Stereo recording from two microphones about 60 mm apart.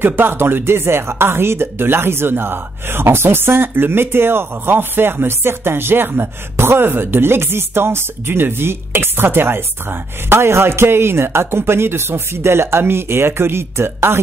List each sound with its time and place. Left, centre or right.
0.0 s speech: right